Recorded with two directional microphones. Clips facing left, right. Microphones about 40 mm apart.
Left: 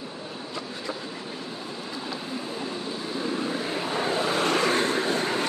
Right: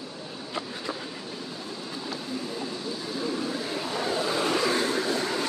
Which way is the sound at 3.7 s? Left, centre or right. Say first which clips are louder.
Left 3 dB; left.